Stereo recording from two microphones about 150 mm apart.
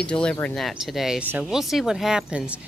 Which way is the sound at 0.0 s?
5° left (ahead or behind).